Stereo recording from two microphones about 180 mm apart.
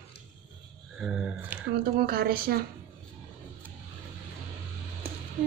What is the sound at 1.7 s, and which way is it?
Speech, 60° right (ahead or behind).